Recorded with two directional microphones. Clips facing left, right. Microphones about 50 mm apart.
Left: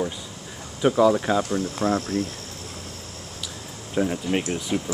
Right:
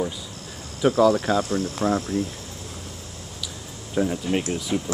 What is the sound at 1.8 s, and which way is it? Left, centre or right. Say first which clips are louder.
Speech: even; centre.